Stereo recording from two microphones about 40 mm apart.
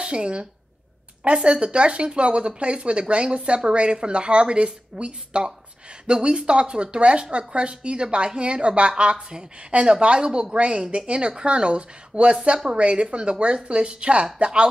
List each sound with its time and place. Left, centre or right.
0.0 s speech: right